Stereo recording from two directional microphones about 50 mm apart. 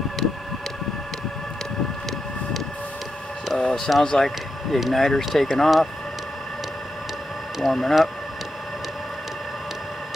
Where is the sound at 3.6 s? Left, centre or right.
Centre.